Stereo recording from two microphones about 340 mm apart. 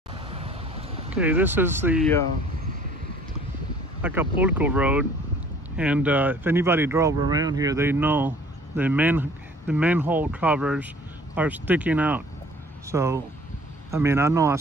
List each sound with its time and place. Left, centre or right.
0.3 s a sound: centre
1.1 s speech: centre
4.0 s a man's voice: centre